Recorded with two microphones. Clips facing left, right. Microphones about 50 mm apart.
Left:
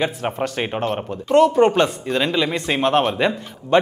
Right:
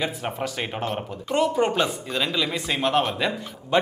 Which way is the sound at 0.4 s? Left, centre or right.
Left.